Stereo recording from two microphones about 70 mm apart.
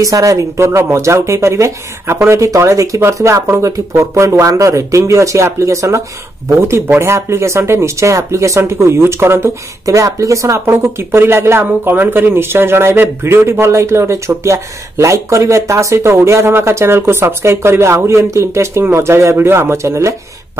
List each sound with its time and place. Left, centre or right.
0.0 s speech: right